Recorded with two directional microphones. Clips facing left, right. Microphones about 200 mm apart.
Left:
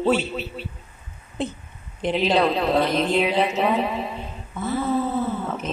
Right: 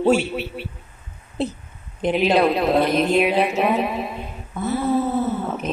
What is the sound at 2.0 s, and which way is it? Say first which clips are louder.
Speech: right 3 dB; 50° right (ahead or behind).